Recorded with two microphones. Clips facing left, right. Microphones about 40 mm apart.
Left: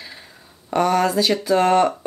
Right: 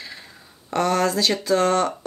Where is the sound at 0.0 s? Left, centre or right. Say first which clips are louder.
Right 1 dB; centre.